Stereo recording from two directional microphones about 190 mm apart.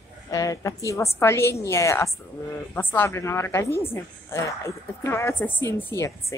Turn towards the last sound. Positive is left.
turn(degrees=15)  # may be behind; listen again after turning